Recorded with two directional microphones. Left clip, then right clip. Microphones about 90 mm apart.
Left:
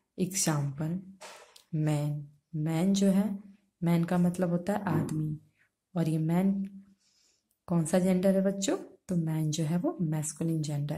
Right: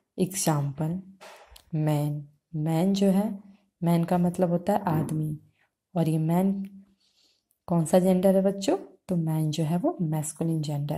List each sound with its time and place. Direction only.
0.1 s a woman's voice: 35° right (ahead or behind)
1.6 s a sound: 35° right (ahead or behind)
1.9 s a woman's voice: 40° right (ahead or behind)